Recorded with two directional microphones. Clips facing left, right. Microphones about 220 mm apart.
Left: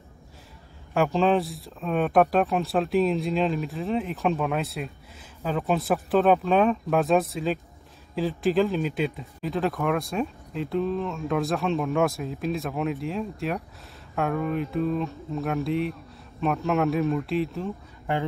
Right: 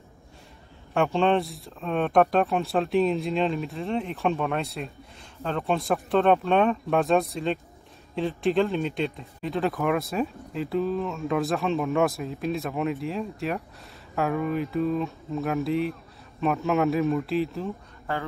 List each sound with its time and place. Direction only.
0.9 s speech: centre (ahead or behind)
18.1 s speech: 20° left (ahead or behind)